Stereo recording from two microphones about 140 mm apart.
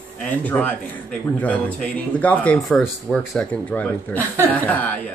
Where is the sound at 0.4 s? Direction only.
10° left (ahead or behind).